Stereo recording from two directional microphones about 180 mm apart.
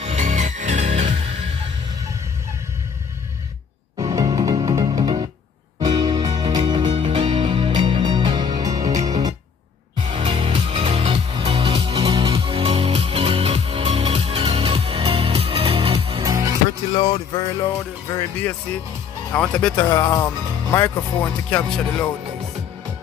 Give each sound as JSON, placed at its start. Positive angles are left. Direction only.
{"t": 0.0, "sound": "music", "side_deg": -40}
{"t": 4.0, "sound": "music", "side_deg": -20}
{"t": 16.9, "sound": "music", "side_deg": 25}
{"t": 19.3, "sound": "speech", "side_deg": 5}